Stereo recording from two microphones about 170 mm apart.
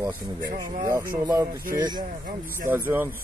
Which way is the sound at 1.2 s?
20° right (ahead or behind).